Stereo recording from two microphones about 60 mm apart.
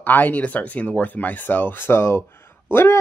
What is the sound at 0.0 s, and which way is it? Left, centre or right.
A man's voice, left.